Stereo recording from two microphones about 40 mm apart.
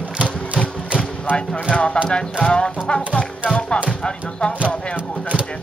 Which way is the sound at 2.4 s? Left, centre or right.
Left.